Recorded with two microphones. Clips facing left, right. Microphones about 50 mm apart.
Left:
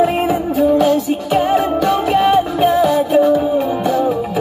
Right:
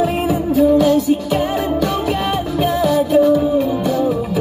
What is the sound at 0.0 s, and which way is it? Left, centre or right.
Music, left.